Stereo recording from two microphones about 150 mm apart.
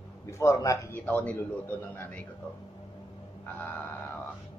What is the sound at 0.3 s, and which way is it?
Speech, 20° left (ahead or behind).